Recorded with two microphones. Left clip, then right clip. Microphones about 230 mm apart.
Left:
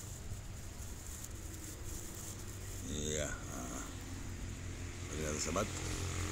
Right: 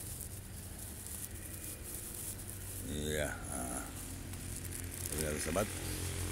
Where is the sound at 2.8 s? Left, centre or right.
Centre.